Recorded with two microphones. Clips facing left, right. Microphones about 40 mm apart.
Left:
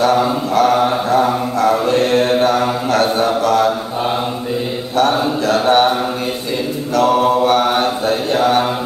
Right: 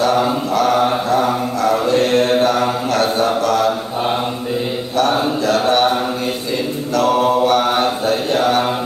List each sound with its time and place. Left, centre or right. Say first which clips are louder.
0.6 s mantra: left 2 dB; left
5.5 s mantra: left 2 dB; left
7.0 s mantra: left 1 dB; left